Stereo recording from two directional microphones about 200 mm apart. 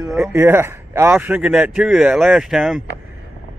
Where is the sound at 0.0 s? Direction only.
15° right (ahead or behind).